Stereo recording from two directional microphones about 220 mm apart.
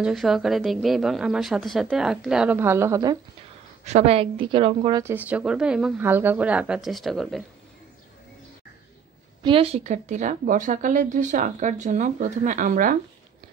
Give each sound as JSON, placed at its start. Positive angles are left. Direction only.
{"t": 0.0, "sound": "a woman's voice", "side_deg": 0}
{"t": 3.8, "sound": "a woman's voice", "side_deg": -30}
{"t": 5.0, "sound": "a woman's voice", "side_deg": -10}
{"t": 9.4, "sound": "a woman's voice", "side_deg": -25}